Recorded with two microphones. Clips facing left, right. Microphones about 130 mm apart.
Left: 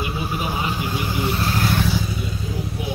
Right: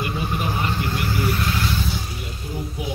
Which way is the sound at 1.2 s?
30° left (ahead or behind).